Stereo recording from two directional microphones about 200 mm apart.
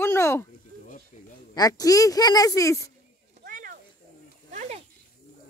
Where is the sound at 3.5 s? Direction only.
45° right (ahead or behind).